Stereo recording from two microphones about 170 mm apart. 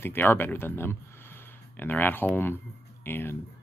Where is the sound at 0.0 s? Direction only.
10° left (ahead or behind).